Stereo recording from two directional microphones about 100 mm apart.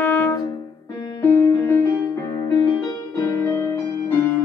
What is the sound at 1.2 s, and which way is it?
Music, 30° left (ahead or behind).